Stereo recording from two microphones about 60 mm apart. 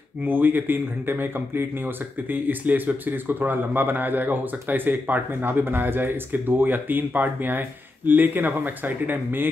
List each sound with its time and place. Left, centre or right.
0.2 s speech: right